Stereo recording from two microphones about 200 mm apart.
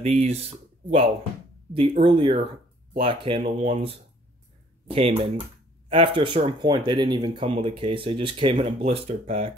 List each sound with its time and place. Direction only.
0.0 s speech: 35° right (ahead or behind)